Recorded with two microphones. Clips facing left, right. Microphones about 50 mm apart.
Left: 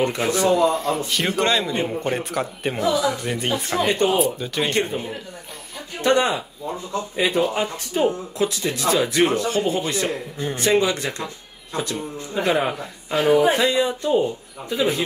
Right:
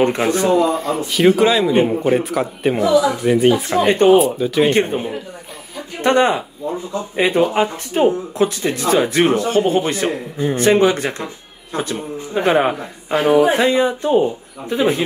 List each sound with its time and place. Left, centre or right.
0.0 s speech: right
0.7 s a man's voice: centre
1.7 s a man's voice: centre
2.1 s a man's voice: centre
2.8 s speech: right
3.2 s a man's voice: centre
3.8 s speech: right
4.2 s a man's voice: centre
4.6 s speech: right
10.3 s speech: right
10.6 s speech: right